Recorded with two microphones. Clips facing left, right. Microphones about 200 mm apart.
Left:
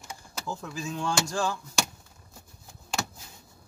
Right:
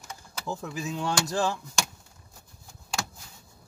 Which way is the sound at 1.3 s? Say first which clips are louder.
Right 2 dB; 20° right (ahead or behind).